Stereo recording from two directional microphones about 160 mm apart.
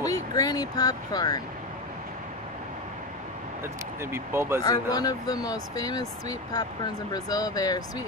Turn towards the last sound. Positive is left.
turn(degrees=25)  # may be behind; listen again after turning